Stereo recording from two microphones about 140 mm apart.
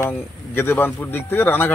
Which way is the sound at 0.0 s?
15° left (ahead or behind).